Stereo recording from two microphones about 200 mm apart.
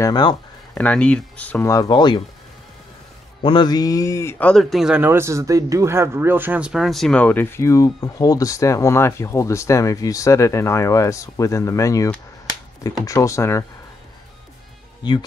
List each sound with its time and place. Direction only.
0.0 s speech: 20° left (ahead or behind)
0.7 s speech: 5° left (ahead or behind); by 2.2 s 25° left (ahead or behind)
3.4 s speech: 20° left (ahead or behind)